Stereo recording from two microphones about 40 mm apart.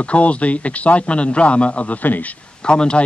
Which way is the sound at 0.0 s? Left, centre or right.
Left.